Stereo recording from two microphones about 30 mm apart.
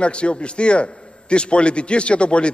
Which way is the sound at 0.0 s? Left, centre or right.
Left.